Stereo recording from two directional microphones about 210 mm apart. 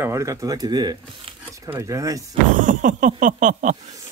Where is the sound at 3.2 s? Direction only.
35° right (ahead or behind).